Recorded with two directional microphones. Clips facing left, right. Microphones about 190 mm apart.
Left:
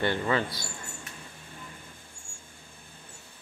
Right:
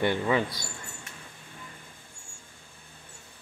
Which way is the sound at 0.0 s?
10° right (ahead or behind).